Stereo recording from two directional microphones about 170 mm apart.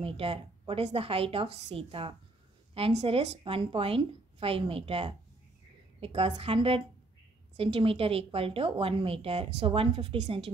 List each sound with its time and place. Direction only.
0.0 s a woman's voice: 35° right (ahead or behind)